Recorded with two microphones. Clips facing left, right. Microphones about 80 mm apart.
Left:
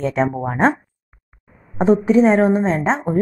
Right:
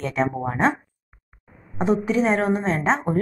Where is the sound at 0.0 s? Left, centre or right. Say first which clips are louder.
Left 4 dB; left.